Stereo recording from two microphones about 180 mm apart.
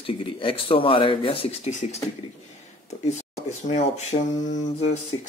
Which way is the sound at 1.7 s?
40° left (ahead or behind).